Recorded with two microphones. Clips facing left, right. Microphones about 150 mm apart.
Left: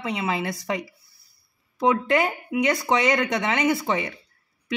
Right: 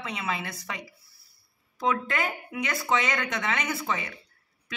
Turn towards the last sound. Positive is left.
turn(degrees=30)  # may be behind; listen again after turning